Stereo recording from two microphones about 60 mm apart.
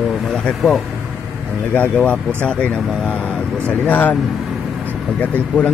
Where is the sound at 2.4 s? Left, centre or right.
Centre.